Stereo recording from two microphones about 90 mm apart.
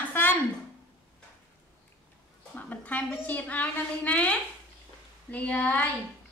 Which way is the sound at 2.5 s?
15° left (ahead or behind).